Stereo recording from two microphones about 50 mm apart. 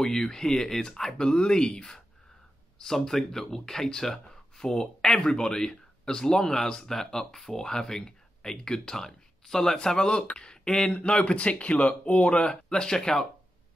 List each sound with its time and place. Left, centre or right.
0.0 s speech: centre